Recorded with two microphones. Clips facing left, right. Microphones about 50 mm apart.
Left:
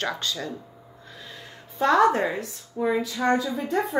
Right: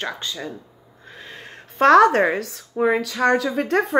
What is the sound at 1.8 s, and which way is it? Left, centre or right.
A woman's voice, right.